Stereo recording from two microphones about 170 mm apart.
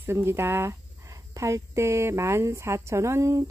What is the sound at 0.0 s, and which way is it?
Speech, 15° right (ahead or behind).